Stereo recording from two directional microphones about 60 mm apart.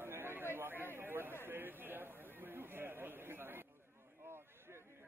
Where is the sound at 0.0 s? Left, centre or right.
Right.